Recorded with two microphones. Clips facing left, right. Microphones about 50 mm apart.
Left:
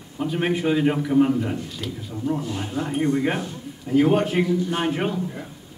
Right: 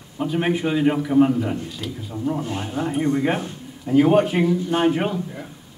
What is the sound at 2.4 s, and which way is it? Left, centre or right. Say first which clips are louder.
Speech: right 1 dB; right.